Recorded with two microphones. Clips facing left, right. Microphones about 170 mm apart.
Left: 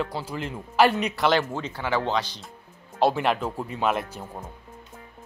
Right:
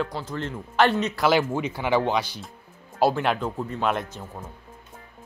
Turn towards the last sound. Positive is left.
turn(degrees=10)  # may be behind; listen again after turning